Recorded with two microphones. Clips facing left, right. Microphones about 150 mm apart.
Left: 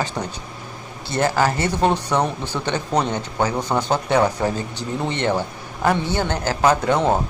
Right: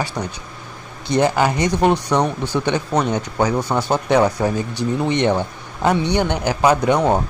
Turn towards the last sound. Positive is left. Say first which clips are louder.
# right 2 dB
turn(degrees=-15)  # may be behind; listen again after turning